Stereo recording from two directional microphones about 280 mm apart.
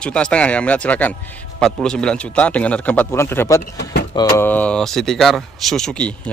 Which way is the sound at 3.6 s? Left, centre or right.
Left.